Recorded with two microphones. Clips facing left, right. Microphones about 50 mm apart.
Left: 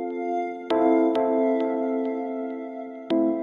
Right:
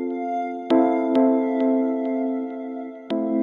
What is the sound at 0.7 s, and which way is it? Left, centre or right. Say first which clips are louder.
Music: even; right.